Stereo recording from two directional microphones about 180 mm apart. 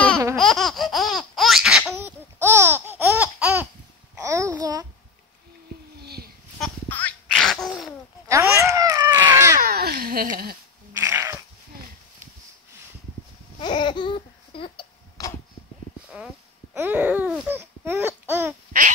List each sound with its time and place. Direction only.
0.4 s laughter: centre (ahead or behind)
4.2 s a sound: 15° right (ahead or behind)
6.0 s a sound: 60° right (ahead or behind)
6.6 s a sound: 10° left (ahead or behind)
8.3 s babbling: 15° right (ahead or behind)
9.6 s dog: 60° right (ahead or behind)
11.0 s cat: 15° right (ahead or behind)
13.6 s babbling: 25° left (ahead or behind)
16.7 s babbling: 10° right (ahead or behind)